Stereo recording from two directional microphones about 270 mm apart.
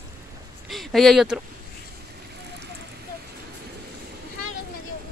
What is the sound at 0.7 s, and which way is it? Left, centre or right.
Speech, centre.